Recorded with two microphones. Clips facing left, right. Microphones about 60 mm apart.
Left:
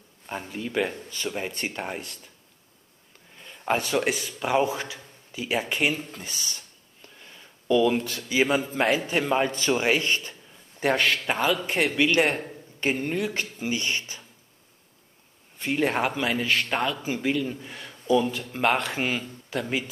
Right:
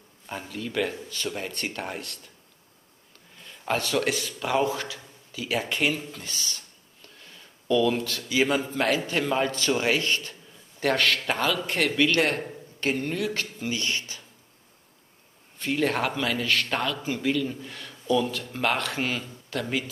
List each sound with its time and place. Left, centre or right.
0.3 s a man's voice: centre
3.3 s speech: left
6.1 s a sound: left
7.6 s a man's voice: left
15.6 s a man's voice: left